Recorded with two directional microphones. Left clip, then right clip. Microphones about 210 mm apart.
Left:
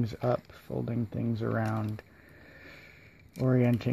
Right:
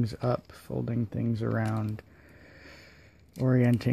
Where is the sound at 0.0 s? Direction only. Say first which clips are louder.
Even; 20° right (ahead or behind).